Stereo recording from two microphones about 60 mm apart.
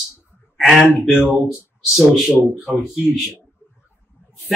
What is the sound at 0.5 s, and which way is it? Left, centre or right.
Speech, centre.